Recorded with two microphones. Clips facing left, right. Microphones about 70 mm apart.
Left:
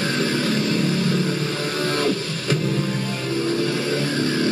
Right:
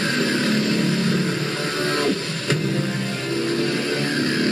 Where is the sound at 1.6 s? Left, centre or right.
Right.